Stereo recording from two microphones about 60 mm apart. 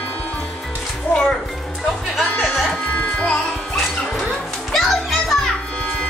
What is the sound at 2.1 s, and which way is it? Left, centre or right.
Music, centre.